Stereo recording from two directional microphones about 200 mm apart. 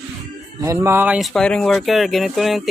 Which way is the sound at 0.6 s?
15° right (ahead or behind).